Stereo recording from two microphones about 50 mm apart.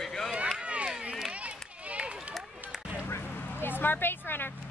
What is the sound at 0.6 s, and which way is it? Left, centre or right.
Run, right.